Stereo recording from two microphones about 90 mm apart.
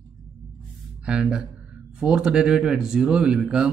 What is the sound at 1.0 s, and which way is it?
Speech, 10° right (ahead or behind).